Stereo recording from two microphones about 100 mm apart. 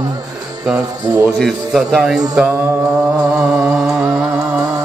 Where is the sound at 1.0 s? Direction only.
35° right (ahead or behind).